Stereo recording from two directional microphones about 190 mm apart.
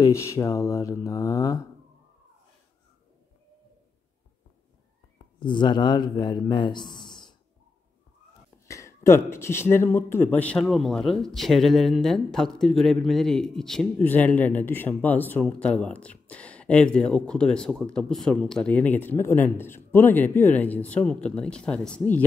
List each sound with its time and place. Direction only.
0.0 s mantra: 15° left (ahead or behind)
5.4 s a man's voice: 25° left (ahead or behind)
8.6 s a sound: 15° left (ahead or behind)
9.3 s speech: 15° left (ahead or behind)